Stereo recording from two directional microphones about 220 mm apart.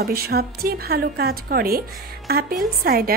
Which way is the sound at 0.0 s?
45° right (ahead or behind).